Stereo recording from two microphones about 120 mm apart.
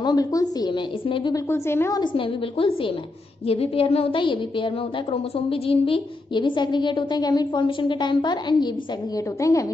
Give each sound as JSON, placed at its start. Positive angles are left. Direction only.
{"t": 0.0, "sound": "a woman's voice", "side_deg": 30}
{"t": 1.3, "sound": "a woman's voice", "side_deg": 20}
{"t": 2.0, "sound": "a woman's voice", "side_deg": 45}
{"t": 9.1, "sound": "a woman's voice", "side_deg": 30}